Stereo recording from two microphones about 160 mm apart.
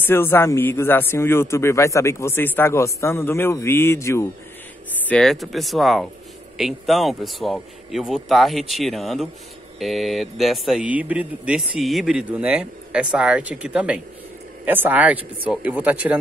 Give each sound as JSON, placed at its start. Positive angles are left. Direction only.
{"t": 0.0, "sound": "speech", "side_deg": 15}
{"t": 5.0, "sound": "speech", "side_deg": 5}